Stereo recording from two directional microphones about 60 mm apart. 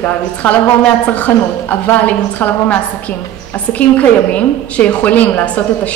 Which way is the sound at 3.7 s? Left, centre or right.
Left.